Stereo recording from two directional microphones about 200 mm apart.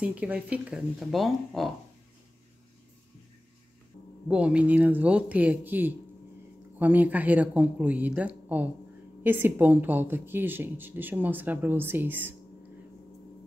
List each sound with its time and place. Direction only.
0.0 s speech: 5° right (ahead or behind)
4.3 s speech: 5° right (ahead or behind)